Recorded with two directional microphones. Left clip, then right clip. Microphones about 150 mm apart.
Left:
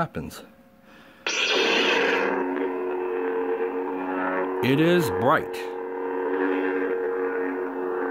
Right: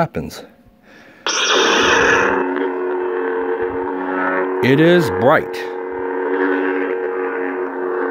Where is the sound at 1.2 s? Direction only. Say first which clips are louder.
Right 8 dB; 35° right (ahead or behind); by 4.6 s 55° right (ahead or behind).